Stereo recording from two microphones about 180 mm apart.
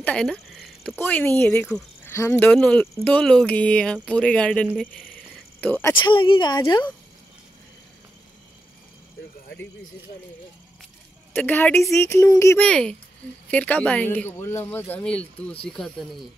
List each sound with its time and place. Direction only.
0.0 s speech: 5° left (ahead or behind)
5.1 s mechanisms: 10° left (ahead or behind)
5.9 s speech: 30° left (ahead or behind)
11.3 s speech: 10° left (ahead or behind)
12.0 s speech: 15° left (ahead or behind)